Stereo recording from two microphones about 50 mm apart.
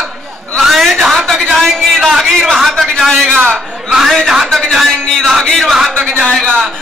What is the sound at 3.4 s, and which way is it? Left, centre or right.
A man's voice, centre.